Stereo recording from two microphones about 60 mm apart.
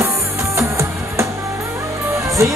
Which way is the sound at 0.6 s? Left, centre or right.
Right.